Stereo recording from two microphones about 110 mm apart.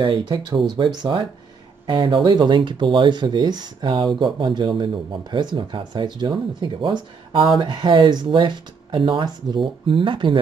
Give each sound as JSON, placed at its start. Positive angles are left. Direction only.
{"t": 0.0, "sound": "speech", "side_deg": -45}